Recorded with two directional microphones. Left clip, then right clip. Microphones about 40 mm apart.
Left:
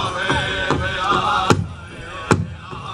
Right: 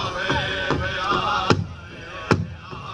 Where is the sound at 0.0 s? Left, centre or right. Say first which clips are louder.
Left 3 dB; centre.